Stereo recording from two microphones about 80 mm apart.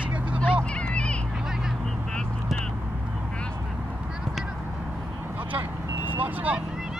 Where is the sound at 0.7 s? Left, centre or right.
Centre.